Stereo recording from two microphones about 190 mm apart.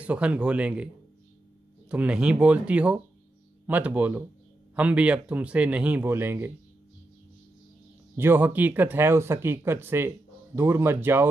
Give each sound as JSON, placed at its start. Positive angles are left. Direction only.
{"t": 0.0, "sound": "speech", "side_deg": -5}
{"t": 1.9, "sound": "speech", "side_deg": -5}
{"t": 8.2, "sound": "speech", "side_deg": -10}